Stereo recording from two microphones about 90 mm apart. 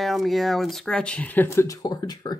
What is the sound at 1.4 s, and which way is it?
Speech, 35° left (ahead or behind).